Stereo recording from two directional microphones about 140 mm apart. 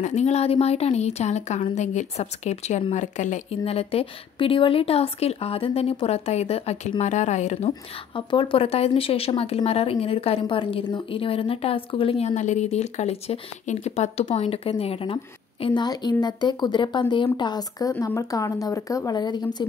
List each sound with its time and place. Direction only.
0.0 s a woman's voice: 55° left (ahead or behind)
8.3 s a woman's voice: 35° left (ahead or behind)
15.6 s a woman's voice: 35° left (ahead or behind)